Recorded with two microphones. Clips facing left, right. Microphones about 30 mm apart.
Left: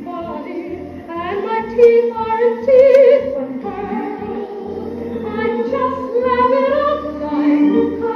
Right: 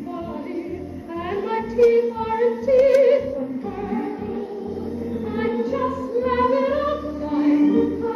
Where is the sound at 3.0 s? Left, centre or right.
Centre.